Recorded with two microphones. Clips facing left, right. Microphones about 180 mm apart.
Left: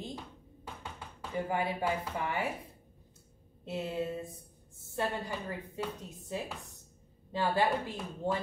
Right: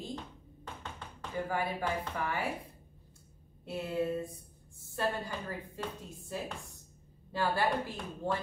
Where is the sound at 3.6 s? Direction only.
20° left (ahead or behind).